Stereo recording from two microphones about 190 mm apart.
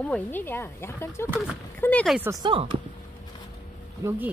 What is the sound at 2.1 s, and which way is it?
Speech, 15° right (ahead or behind).